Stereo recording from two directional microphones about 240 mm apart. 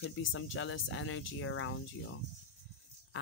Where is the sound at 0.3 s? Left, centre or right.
Left.